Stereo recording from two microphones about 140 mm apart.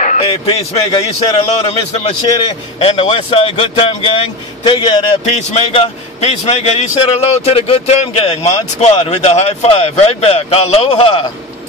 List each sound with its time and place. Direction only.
0.2 s speech: 40° left (ahead or behind)
2.2 s speech: 30° left (ahead or behind)
2.8 s speech: 45° left (ahead or behind)
5.2 s speech: 50° left (ahead or behind)